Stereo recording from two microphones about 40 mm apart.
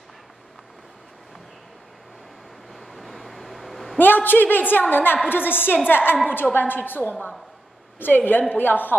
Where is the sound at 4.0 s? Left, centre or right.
Left.